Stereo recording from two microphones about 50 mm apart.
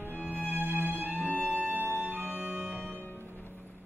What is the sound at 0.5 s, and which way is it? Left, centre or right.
Music, right.